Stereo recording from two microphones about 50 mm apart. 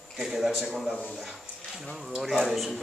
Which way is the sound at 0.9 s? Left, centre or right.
Centre.